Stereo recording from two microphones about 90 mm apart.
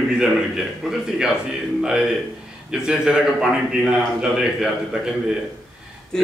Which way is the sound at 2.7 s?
10° right (ahead or behind).